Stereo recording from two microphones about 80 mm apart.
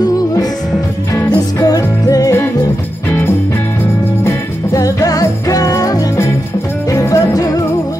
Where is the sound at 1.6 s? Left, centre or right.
Left.